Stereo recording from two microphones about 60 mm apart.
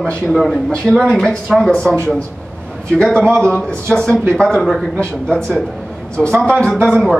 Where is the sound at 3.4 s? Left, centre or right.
Centre.